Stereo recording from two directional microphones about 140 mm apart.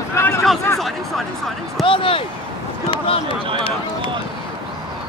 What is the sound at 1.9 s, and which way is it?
Speech, 40° left (ahead or behind).